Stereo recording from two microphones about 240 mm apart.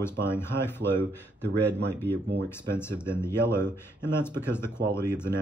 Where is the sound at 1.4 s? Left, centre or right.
Right.